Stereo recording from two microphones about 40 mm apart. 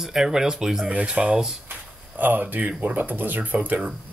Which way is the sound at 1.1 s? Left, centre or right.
Right.